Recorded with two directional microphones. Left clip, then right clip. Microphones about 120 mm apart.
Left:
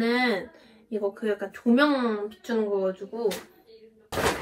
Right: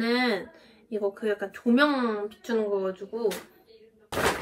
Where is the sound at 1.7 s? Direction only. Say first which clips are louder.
Left 1 dB; 15° right (ahead or behind).